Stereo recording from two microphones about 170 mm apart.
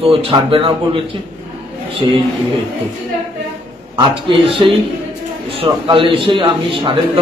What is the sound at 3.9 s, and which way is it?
Speech, 30° right (ahead or behind).